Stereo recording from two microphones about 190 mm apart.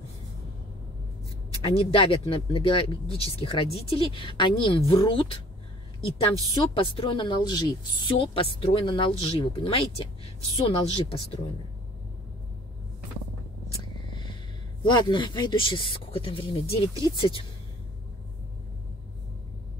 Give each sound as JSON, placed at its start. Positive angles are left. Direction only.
{"t": 1.9, "sound": "a woman's voice", "side_deg": 30}
{"t": 14.8, "sound": "speech", "side_deg": 25}